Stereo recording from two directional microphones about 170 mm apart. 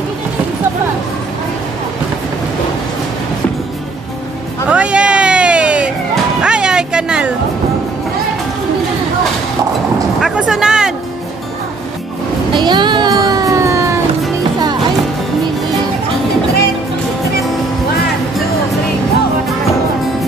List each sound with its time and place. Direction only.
4.6 s hubbub: 5° right (ahead or behind)
6.4 s music: 5° right (ahead or behind)
10.2 s a sound: 5° right (ahead or behind)
12.5 s music: 25° right (ahead or behind)